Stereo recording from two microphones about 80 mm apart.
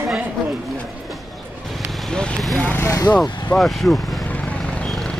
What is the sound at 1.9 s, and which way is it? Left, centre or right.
Vehicle, centre.